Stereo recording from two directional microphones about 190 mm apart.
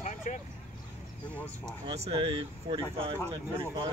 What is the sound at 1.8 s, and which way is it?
Speech, 30° right (ahead or behind).